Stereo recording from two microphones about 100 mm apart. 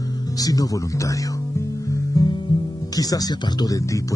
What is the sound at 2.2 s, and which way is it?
Music, 40° left (ahead or behind).